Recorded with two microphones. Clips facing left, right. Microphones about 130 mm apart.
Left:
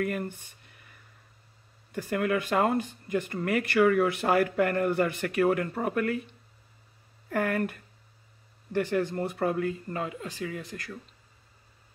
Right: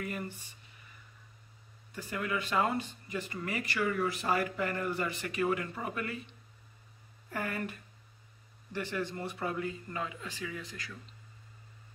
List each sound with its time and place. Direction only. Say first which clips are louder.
0.0 s speech: left 8 dB; 55° left (ahead or behind)
1.9 s speech: left 8 dB; 60° left (ahead or behind)
7.2 s speech: left 9 dB; 55° left (ahead or behind)